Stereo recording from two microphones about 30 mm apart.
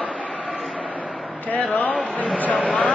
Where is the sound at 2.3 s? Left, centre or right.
Left.